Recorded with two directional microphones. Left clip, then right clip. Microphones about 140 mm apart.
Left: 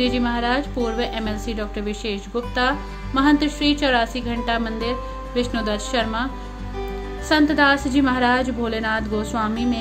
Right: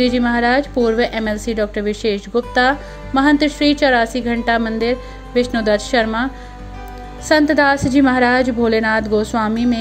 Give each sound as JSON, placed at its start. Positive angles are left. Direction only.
{"t": 0.0, "sound": "a woman's voice", "side_deg": -45}